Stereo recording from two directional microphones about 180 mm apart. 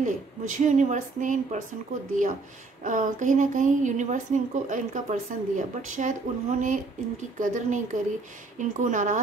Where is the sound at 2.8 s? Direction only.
45° right (ahead or behind).